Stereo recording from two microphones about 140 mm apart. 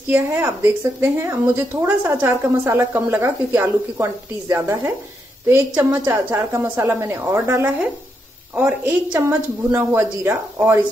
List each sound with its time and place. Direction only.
0.1 s speech: 15° right (ahead or behind)